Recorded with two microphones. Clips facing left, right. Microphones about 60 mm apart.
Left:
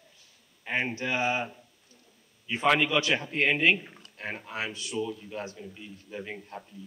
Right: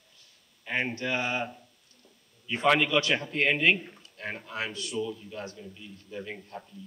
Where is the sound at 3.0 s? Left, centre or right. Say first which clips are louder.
Even; centre.